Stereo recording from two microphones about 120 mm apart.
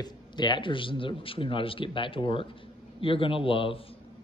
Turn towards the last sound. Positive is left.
turn(degrees=45)  # may be behind; listen again after turning